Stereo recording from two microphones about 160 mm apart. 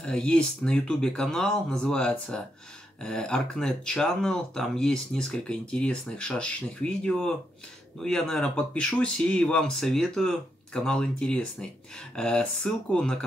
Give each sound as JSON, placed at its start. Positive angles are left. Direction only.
{"t": 0.0, "sound": "speech", "side_deg": 5}